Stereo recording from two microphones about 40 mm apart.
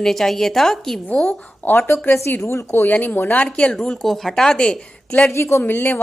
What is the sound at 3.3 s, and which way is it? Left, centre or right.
Speech, left.